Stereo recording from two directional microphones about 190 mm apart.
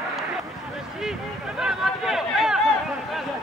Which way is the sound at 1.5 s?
5° right (ahead or behind).